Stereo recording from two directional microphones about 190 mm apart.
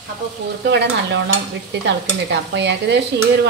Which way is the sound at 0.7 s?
65° right (ahead or behind).